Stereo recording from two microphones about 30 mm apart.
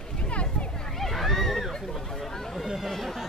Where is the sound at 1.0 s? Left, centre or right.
Centre.